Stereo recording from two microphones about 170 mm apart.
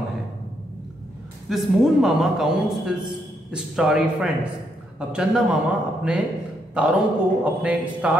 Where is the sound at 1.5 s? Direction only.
Centre (ahead or behind).